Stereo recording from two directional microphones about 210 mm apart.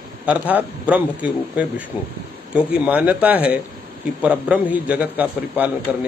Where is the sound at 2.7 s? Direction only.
5° right (ahead or behind).